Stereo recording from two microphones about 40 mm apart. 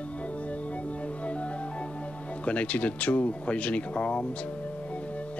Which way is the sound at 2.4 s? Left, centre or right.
Left.